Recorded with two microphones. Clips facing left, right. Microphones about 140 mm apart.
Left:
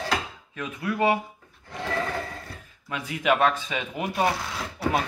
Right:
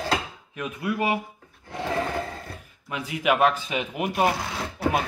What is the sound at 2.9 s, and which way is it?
A man's voice, 10° right (ahead or behind).